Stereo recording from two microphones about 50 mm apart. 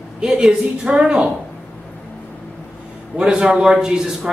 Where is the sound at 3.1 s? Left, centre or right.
Centre.